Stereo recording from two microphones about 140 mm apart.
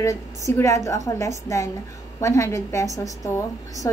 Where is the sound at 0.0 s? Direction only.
20° left (ahead or behind).